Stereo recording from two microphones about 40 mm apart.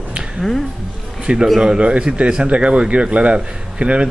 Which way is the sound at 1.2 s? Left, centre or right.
Right.